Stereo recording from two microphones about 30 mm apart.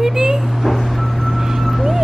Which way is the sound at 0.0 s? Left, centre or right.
Right.